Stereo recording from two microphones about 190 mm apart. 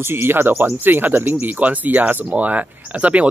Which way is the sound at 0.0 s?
10° right (ahead or behind).